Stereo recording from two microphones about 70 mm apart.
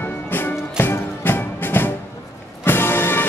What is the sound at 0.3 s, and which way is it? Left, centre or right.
Music, left.